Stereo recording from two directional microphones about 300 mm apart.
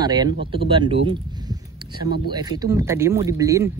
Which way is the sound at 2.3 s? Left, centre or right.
Centre.